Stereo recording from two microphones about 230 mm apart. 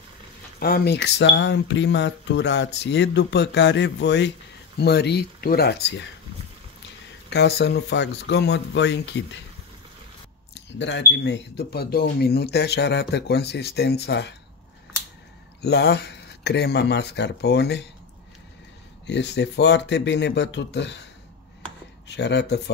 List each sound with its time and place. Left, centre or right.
0.6 s speech: left
7.2 s speech: left
10.5 s speech: left
15.6 s speech: left
19.0 s speech: left
22.0 s speech: left